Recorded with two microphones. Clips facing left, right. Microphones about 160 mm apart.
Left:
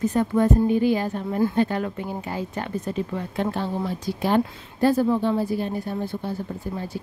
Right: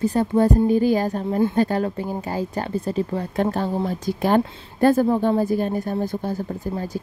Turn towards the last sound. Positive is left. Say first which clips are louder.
# right 3 dB
turn(degrees=-45)  # may be behind; listen again after turning